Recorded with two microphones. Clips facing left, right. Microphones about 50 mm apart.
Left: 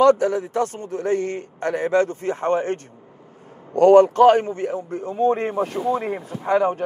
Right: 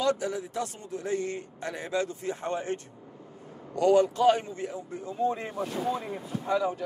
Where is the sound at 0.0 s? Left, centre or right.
Left.